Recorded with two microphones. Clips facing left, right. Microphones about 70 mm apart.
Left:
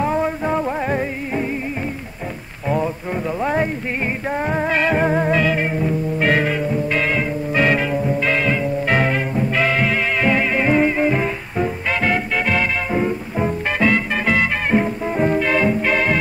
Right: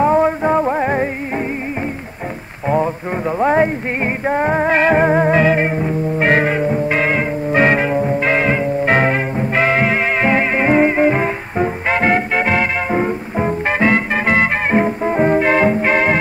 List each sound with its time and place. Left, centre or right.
0.0 s music: right
2.7 s a sound: right
4.3 s music: right